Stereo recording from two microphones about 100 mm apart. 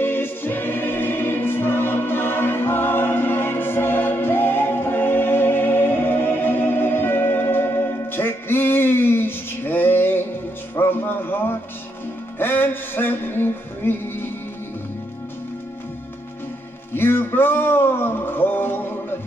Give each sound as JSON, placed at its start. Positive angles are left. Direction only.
{"t": 0.0, "sound": "choir", "side_deg": 20}
{"t": 10.8, "sound": "music", "side_deg": 20}
{"t": 16.9, "sound": "music", "side_deg": 20}